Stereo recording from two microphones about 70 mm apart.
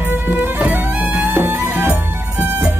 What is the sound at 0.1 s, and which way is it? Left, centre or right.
Music, right.